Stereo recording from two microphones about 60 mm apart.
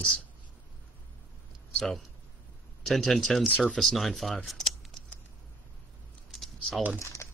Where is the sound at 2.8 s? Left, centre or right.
Centre.